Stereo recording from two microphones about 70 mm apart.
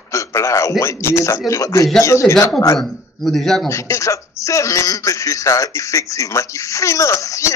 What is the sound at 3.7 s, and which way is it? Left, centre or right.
A man's voice, left.